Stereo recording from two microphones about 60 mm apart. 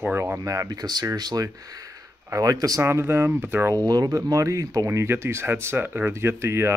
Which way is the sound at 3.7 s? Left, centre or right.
Right.